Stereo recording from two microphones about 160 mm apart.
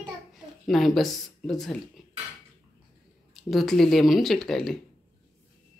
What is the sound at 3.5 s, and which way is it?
Speech, centre (ahead or behind).